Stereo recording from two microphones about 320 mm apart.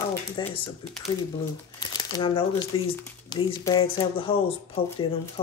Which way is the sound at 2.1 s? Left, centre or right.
Centre.